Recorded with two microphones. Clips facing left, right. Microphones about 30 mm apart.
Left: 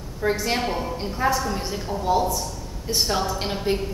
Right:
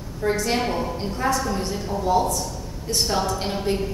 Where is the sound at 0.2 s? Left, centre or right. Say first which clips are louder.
Right 1 dB; centre.